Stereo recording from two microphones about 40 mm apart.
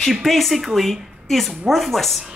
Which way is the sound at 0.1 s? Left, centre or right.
Centre.